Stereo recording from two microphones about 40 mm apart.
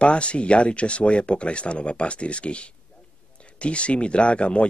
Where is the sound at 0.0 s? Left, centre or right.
Left.